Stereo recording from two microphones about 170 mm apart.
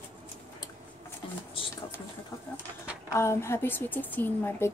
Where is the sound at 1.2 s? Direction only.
30° left (ahead or behind).